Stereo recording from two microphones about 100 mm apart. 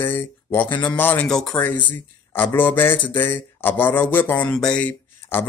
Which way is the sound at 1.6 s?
15° left (ahead or behind).